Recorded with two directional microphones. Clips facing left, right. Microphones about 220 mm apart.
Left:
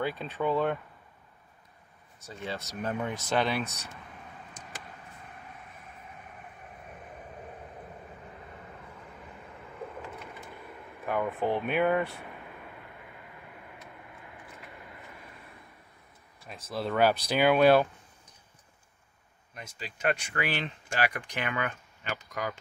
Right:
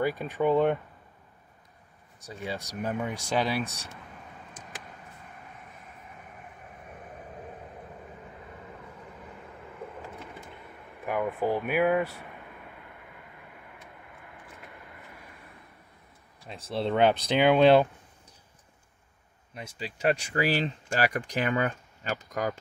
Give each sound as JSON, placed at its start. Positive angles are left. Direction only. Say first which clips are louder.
{"t": 0.0, "sound": "speech", "louder": "right 4 dB", "side_deg": -10}
{"t": 2.1, "sound": "speech", "louder": "right 2 dB", "side_deg": -15}
{"t": 11.1, "sound": "speech", "louder": "right 1 dB", "side_deg": -10}
{"t": 16.4, "sound": "speech", "louder": "right 3 dB", "side_deg": -30}
{"t": 19.5, "sound": "speech", "louder": "right 5 dB", "side_deg": -30}